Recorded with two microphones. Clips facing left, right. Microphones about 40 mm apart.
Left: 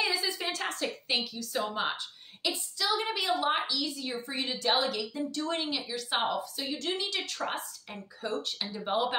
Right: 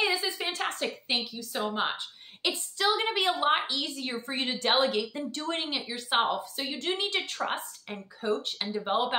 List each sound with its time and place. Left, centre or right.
0.0 s a sound: right
1.3 s speech: right
2.5 s a woman's voice: right